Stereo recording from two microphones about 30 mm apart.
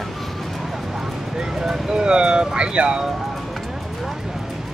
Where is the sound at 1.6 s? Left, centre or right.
Centre.